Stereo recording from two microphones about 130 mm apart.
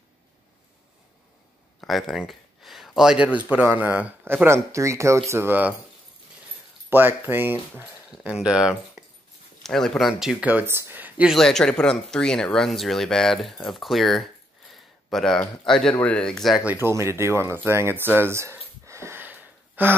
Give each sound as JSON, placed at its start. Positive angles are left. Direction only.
{"t": 1.8, "sound": "speech", "side_deg": 0}
{"t": 6.9, "sound": "speech", "side_deg": -15}
{"t": 8.1, "sound": "speech", "side_deg": -5}
{"t": 10.5, "sound": "speech", "side_deg": -15}
{"t": 11.3, "sound": "speech", "side_deg": 5}
{"t": 16.6, "sound": "speech", "side_deg": -20}